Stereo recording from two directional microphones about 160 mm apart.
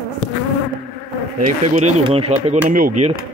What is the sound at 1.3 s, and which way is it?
Speech, 40° right (ahead or behind).